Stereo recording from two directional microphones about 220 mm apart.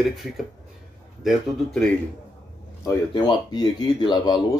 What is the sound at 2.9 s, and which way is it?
Speech, 20° left (ahead or behind).